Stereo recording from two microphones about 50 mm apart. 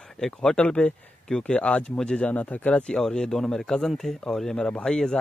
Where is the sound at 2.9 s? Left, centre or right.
Centre.